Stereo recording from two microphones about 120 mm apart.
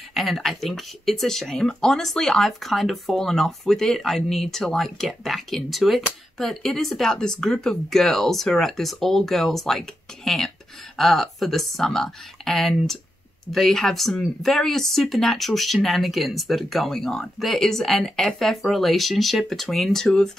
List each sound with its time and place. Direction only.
0.1 s speech: centre (ahead or behind)